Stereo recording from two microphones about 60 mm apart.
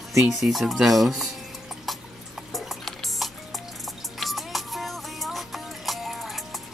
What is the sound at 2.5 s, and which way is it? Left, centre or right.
Music, centre.